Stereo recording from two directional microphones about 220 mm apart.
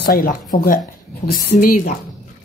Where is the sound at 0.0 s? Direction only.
40° left (ahead or behind).